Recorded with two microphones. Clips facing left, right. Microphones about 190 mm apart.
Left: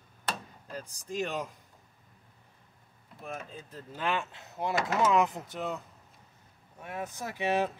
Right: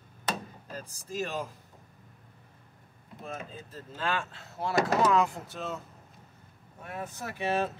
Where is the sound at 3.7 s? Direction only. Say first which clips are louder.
Left 1 dB; 15° left (ahead or behind).